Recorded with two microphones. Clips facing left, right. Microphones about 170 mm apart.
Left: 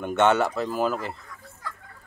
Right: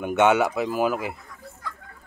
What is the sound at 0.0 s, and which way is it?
Speech, 10° right (ahead or behind).